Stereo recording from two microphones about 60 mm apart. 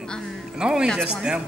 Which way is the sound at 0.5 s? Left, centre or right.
Centre.